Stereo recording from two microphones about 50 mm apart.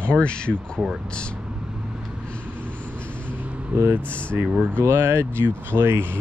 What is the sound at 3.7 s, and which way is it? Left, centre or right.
Speech, right.